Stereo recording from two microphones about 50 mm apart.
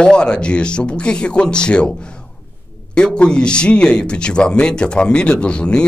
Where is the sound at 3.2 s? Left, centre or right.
Centre.